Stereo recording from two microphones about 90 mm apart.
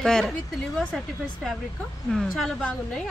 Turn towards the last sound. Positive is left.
turn(degrees=5)  # may be behind; listen again after turning